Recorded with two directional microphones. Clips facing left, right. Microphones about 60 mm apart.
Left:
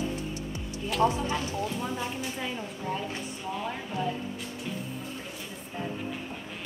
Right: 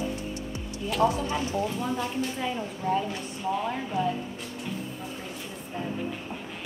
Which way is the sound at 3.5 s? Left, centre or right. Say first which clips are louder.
Right 5 dB; centre.